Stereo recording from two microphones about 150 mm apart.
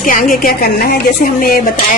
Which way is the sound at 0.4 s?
80° left.